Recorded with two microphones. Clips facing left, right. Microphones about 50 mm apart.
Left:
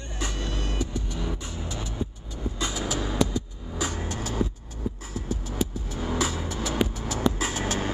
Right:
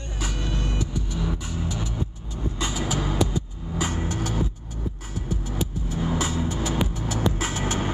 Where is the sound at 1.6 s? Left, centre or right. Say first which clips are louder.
Right 4 dB; centre.